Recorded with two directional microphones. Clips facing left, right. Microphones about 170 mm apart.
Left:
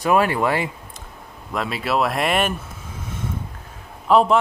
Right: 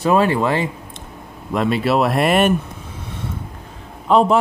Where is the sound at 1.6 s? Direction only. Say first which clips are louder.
Right 5 dB; centre (ahead or behind).